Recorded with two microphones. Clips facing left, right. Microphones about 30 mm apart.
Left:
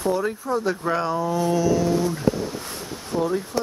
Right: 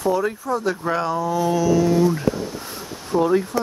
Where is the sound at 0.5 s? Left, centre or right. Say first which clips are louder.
Left 1 dB; centre.